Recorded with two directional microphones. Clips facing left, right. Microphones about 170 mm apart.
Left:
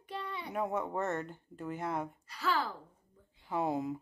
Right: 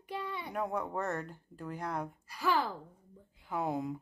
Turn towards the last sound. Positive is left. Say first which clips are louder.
# left 1 dB
turn(degrees=0)  # may be behind; listen again after turning